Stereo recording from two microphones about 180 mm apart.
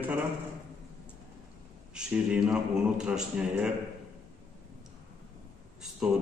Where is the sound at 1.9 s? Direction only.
5° right (ahead or behind).